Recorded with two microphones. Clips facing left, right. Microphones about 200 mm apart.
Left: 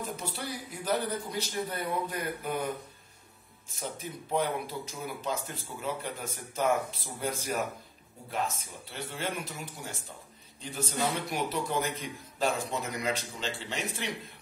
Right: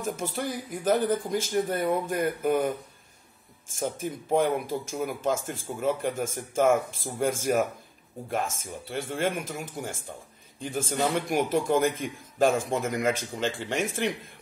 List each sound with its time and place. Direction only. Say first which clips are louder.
0.0 s a man's voice: right 6 dB; 50° right (ahead or behind)
3.7 s a man's voice: right 8 dB; 50° right (ahead or behind)